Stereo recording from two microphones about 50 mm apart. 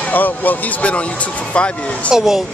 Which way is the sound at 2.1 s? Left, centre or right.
Centre.